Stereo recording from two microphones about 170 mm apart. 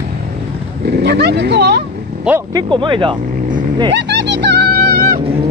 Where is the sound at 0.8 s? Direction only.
80° right.